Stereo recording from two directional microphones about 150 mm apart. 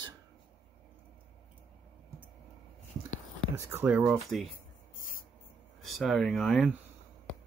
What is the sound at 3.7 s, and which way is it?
Speech, 15° right (ahead or behind).